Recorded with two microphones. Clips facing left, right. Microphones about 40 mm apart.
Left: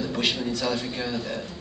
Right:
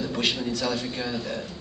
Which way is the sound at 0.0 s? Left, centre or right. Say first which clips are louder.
Even; centre.